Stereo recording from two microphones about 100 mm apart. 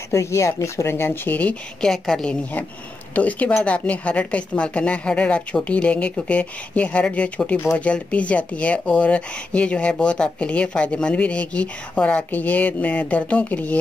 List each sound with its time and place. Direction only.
0.1 s speech: 30° left (ahead or behind)